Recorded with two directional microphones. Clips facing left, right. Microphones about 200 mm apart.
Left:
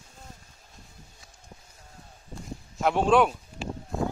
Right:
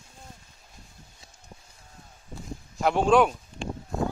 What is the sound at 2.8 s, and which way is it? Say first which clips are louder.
Speech: right 1 dB; centre (ahead or behind).